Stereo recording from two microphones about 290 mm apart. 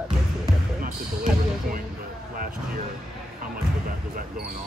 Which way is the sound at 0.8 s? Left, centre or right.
Right.